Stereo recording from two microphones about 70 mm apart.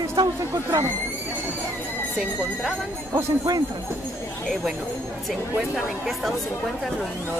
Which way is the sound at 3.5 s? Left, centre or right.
Right.